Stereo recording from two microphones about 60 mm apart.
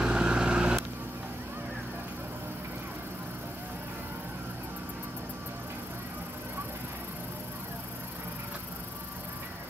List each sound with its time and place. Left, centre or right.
0.0 s vehicle: centre